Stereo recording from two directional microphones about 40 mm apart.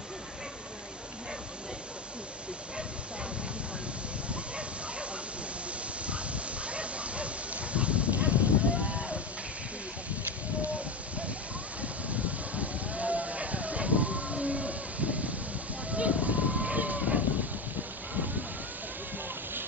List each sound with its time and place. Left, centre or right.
6.0 s dog: right
11.8 s sheep: right
15.9 s vehicle: right
18.1 s wind noise: right